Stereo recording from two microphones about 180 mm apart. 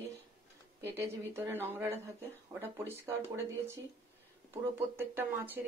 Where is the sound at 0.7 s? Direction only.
15° right (ahead or behind).